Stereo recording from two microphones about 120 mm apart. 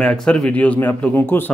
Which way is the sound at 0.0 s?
5° left (ahead or behind).